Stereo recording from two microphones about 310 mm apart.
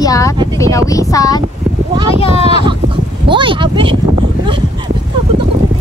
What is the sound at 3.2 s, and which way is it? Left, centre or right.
Speech, centre.